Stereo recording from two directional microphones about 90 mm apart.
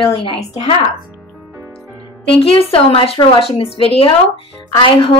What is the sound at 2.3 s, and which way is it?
Speech, 90° left.